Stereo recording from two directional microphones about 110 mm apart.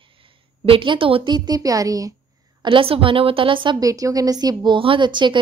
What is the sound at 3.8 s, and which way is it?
A woman's voice, 30° right (ahead or behind).